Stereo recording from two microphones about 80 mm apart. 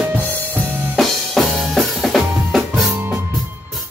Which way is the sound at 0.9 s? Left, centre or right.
Centre.